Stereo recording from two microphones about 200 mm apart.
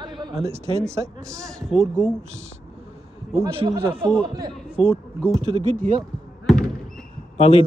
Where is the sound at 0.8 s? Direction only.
15° right (ahead or behind).